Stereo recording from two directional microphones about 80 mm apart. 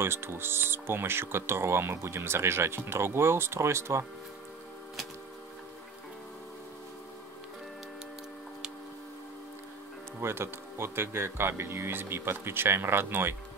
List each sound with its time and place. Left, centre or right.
0.0 s speech: right
10.2 s speech: right